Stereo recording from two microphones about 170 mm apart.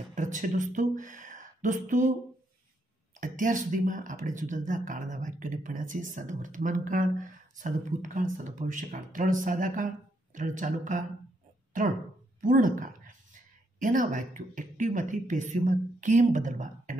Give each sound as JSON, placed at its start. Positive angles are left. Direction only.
{"t": 0.1, "sound": "speech", "side_deg": -45}
{"t": 3.2, "sound": "a woman's voice", "side_deg": -50}